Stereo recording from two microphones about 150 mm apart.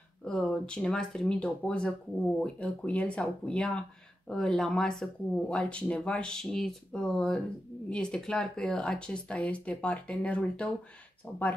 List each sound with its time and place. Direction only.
0.2 s speech: 5° left (ahead or behind)